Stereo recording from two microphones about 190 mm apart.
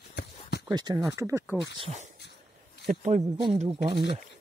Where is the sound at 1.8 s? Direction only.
35° right (ahead or behind).